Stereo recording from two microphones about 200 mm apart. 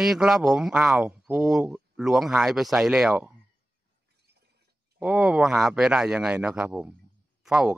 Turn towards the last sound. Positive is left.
turn(degrees=-5)  # may be behind; listen again after turning